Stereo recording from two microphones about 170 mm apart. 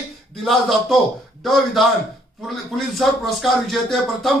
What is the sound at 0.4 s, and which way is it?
A man's voice, centre (ahead or behind).